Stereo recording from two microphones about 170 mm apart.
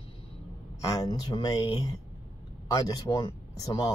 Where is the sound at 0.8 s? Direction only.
20° left (ahead or behind).